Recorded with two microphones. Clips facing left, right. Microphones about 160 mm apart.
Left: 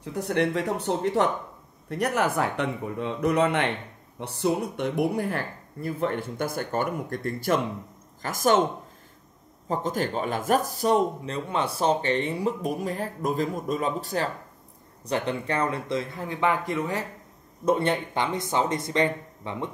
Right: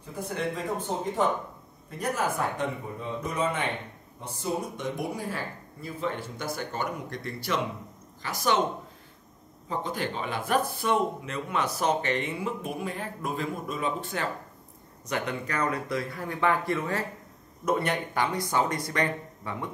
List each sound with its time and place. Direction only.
0.0 s speech: 75° left (ahead or behind); by 8.5 s 45° left (ahead or behind)
9.7 s speech: 45° left (ahead or behind); by 19.7 s 25° left (ahead or behind)